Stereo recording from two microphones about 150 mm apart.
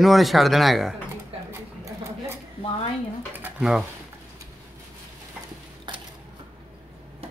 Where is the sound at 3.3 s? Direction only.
10° right (ahead or behind).